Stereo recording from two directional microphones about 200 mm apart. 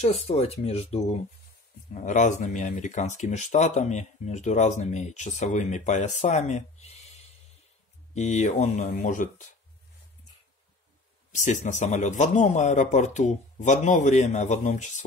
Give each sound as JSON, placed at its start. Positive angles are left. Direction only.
{"t": 0.0, "sound": "speech", "side_deg": 35}
{"t": 11.3, "sound": "speech", "side_deg": 40}